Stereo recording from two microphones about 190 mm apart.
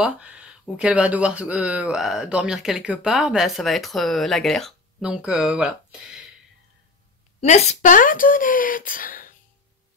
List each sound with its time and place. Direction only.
0.0 s speech: 5° right (ahead or behind)
7.3 s speech: 35° left (ahead or behind)